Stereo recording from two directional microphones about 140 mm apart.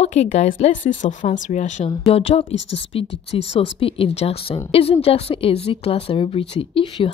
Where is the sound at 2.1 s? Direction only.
45° left (ahead or behind).